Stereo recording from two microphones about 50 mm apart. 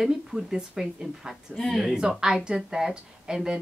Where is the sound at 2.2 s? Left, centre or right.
Centre.